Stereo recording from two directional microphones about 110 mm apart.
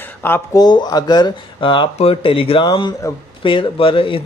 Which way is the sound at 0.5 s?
40° left (ahead or behind).